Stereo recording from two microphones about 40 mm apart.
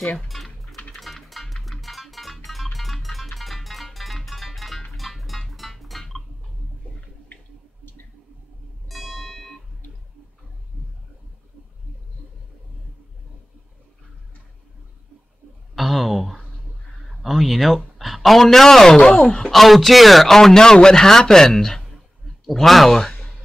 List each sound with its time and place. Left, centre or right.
0.3 s typing: centre
0.9 s music: centre
8.8 s music: centre
15.7 s a sound: centre
17.2 s a man's voice: centre; by 19.5 s left
19.5 s a man's voice: centre